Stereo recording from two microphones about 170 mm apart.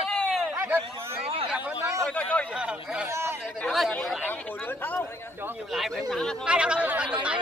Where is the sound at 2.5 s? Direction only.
5° right (ahead or behind).